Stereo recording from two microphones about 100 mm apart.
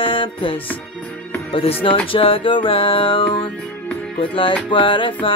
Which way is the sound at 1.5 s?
70° left (ahead or behind).